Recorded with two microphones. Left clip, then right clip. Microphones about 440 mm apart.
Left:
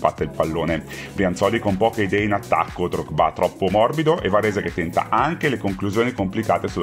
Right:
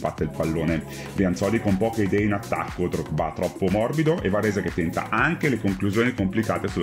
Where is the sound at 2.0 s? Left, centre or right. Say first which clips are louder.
Left 3 dB; centre.